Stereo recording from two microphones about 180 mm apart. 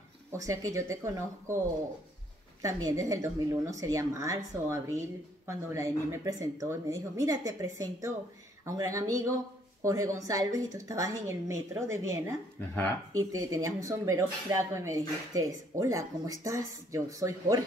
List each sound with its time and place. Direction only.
0.3 s speech: 15° right (ahead or behind)
2.6 s speech: 15° right (ahead or behind)
12.5 s speech: 10° left (ahead or behind)
13.2 s speech: 20° right (ahead or behind)